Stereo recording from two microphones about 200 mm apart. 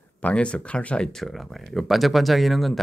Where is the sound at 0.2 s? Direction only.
5° left (ahead or behind).